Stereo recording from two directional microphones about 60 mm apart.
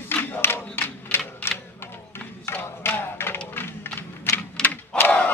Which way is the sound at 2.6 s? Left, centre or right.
Left.